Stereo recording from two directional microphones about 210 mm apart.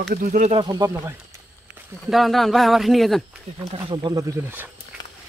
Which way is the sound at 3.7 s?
25° right (ahead or behind).